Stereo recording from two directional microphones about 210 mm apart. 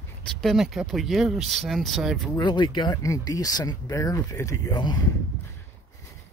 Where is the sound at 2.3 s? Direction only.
20° left (ahead or behind).